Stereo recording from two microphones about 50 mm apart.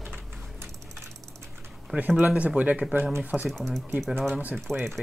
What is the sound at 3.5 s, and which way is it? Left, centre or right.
Speech, centre.